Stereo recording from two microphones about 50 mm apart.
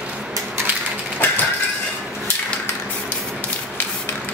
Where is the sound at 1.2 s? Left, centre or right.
Left.